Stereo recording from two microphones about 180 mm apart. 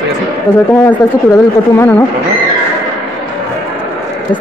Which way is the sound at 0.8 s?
10° left (ahead or behind).